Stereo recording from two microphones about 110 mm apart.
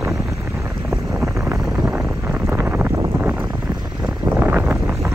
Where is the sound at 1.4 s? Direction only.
5° right (ahead or behind); by 3.4 s 20° right (ahead or behind).